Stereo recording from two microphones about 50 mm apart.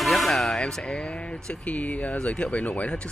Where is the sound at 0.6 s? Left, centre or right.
Centre.